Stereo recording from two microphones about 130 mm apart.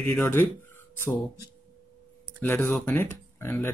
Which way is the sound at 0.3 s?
15° left (ahead or behind).